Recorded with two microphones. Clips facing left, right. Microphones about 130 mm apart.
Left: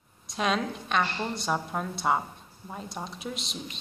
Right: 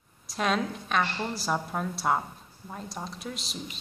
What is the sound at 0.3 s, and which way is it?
A woman's voice, centre (ahead or behind).